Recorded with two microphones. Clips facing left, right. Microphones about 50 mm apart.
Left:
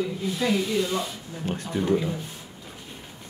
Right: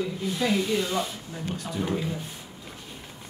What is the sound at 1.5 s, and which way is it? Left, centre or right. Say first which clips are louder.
Speech: left 4 dB; left.